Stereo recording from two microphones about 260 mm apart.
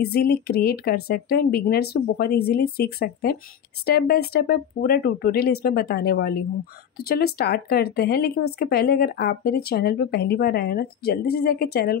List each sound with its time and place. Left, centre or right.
0.0 s speech: left